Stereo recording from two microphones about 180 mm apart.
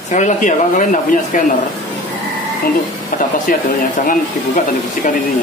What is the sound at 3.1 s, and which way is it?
Speech, 50° left (ahead or behind).